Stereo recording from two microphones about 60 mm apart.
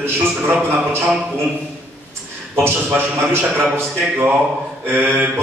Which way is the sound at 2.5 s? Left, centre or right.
Right.